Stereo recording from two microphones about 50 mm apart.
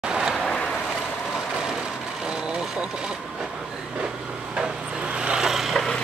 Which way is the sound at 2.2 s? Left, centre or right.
Centre.